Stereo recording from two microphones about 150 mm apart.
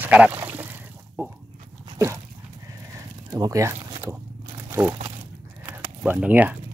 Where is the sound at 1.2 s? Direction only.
15° right (ahead or behind).